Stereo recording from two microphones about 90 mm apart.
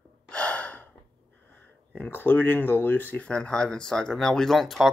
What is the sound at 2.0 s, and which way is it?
Speech, 20° left (ahead or behind).